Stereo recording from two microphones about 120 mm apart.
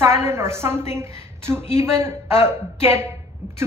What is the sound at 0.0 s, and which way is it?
A woman's voice, 20° right (ahead or behind).